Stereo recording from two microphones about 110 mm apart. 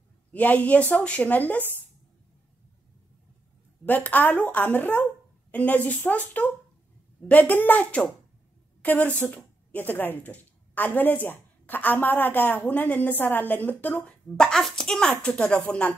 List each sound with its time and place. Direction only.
0.3 s a woman's voice: 15° left (ahead or behind)
3.8 s a woman's voice: 15° left (ahead or behind)
14.3 s a woman's voice: 5° left (ahead or behind)